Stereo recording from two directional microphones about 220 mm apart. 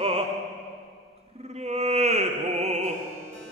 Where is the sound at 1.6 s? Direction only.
30° right (ahead or behind).